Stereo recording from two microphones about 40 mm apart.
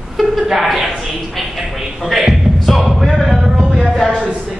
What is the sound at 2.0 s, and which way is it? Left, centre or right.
A man's voice, centre.